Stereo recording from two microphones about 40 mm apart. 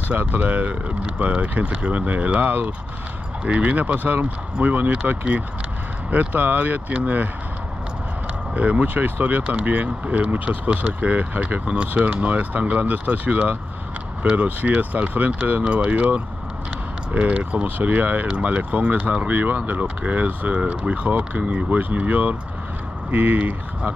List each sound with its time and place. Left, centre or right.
0.2 s speech: right
0.5 s speech: right
8.5 s speech: right
8.8 s speech: right
11.6 s speech: right
11.9 s speech: right
21.6 s speech: right